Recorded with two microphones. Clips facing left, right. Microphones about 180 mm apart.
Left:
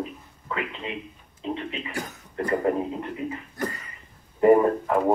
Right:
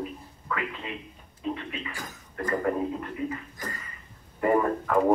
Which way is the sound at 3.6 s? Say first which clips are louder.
Left 8 dB; 70° left (ahead or behind).